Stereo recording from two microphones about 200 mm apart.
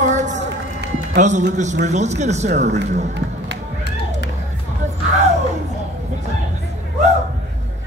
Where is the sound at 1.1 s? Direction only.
35° right (ahead or behind).